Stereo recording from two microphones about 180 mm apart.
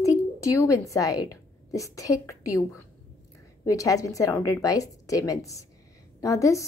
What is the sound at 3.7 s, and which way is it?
A woman's voice, 20° left (ahead or behind).